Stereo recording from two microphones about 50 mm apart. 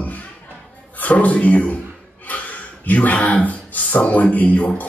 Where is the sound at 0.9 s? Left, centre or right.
Left.